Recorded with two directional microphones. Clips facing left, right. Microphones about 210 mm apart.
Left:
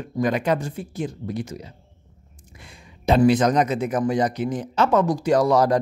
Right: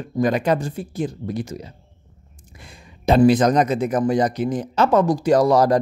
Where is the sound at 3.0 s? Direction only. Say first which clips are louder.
Right 2 dB; 40° right (ahead or behind).